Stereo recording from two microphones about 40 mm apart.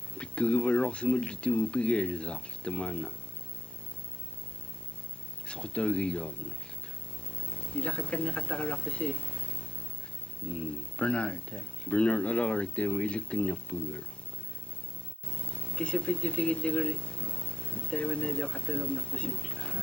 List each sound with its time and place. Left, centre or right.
0.2 s speech: left
5.5 s speech: left
7.3 s speech: left
15.2 s speech: left